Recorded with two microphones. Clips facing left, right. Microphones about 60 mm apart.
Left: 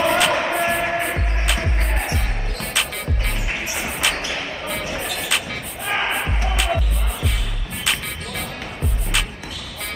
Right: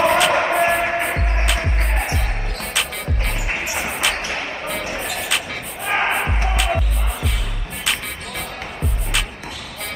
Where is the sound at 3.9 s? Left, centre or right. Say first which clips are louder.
Even; centre.